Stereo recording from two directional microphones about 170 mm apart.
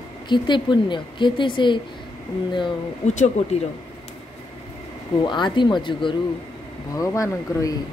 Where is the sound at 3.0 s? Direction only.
45° left (ahead or behind).